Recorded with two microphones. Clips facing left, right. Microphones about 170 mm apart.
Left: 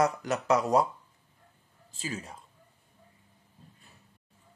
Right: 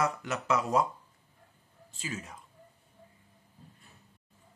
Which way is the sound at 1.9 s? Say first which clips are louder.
Left 2 dB; 35° left (ahead or behind).